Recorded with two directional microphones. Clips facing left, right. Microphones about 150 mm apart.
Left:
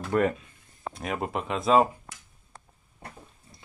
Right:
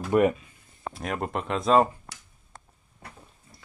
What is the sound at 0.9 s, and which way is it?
Speech, centre (ahead or behind).